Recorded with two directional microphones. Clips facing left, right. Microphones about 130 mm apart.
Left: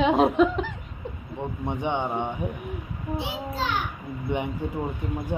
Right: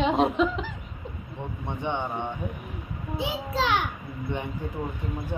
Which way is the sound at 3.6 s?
85° right.